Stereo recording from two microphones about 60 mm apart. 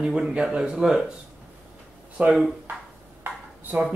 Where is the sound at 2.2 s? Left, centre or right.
Right.